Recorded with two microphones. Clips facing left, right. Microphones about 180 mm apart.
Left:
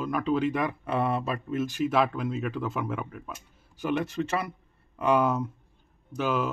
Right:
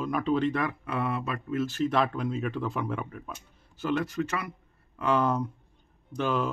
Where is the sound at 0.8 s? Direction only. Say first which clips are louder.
Left 3 dB; 30° left (ahead or behind).